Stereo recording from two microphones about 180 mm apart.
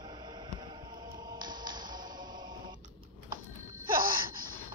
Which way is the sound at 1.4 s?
25° right (ahead or behind).